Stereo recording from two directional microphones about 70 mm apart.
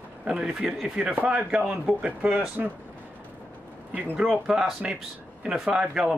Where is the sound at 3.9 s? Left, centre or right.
Right.